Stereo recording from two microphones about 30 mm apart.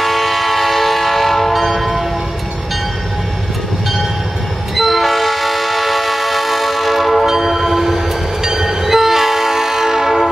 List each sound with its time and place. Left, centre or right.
0.0 s train: centre
4.7 s train: centre